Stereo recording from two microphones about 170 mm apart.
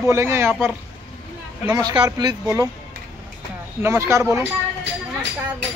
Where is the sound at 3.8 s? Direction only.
15° right (ahead or behind).